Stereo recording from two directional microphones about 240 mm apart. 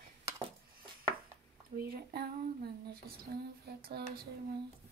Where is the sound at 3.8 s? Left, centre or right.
Right.